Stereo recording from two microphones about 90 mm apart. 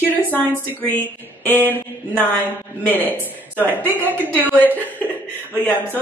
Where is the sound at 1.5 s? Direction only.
25° left (ahead or behind).